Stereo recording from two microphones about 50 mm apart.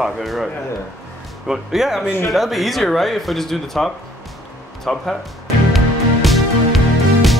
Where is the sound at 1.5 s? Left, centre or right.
Centre.